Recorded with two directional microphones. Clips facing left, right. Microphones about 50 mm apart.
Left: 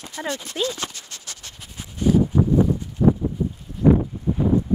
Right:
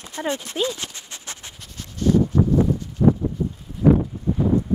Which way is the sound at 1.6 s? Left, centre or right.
Centre.